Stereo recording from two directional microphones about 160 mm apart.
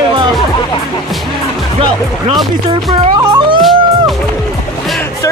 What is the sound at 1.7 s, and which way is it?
Speech, 35° right (ahead or behind).